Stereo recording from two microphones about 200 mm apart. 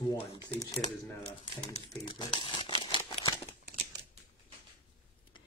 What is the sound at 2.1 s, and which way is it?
Crumpling, 25° left (ahead or behind).